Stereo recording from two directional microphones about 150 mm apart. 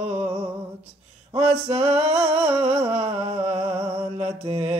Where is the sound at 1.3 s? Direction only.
40° right (ahead or behind).